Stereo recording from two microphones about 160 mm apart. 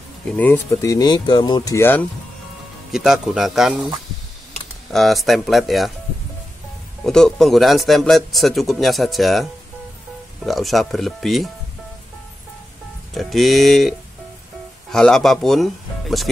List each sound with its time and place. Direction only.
0.3 s speech: 10° left (ahead or behind)
2.9 s a man's voice: centre (ahead or behind)
4.9 s a man's voice: centre (ahead or behind)
7.0 s a man's voice: 5° left (ahead or behind)
13.1 s a man's voice: centre (ahead or behind)